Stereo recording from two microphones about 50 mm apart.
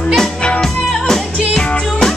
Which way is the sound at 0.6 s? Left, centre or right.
Centre.